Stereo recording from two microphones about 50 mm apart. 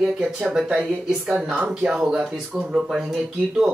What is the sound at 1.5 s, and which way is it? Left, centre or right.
Speech, right.